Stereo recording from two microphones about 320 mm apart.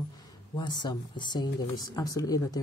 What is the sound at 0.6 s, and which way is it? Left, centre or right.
Speech, centre.